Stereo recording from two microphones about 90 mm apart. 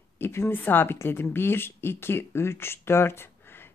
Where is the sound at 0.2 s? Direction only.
25° left (ahead or behind).